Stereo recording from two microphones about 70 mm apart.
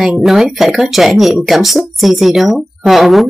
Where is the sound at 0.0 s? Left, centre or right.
Centre.